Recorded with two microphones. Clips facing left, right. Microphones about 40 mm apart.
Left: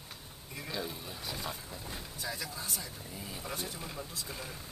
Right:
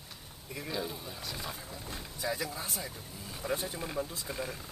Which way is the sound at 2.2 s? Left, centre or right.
Centre.